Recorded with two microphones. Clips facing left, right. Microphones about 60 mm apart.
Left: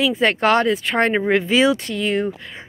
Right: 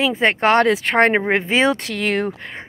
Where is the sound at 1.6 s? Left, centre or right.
Right.